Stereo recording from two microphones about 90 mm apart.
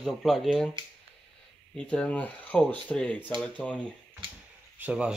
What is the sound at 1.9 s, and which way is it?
Speech, 15° left (ahead or behind).